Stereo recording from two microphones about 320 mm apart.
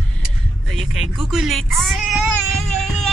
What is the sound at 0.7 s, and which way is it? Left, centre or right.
Speech, centre.